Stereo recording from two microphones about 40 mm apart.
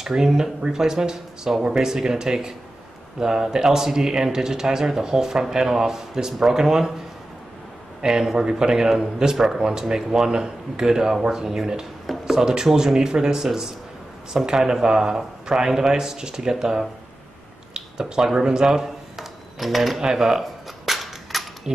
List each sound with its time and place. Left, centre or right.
0.0 s speech: centre
8.0 s speech: centre
19.6 s speech: centre
20.0 s cap gun: centre